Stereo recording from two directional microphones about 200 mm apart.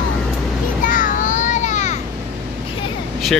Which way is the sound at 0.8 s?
40° left (ahead or behind).